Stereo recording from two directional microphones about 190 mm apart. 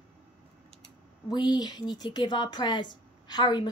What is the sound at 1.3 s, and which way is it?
A woman's voice, 20° left (ahead or behind).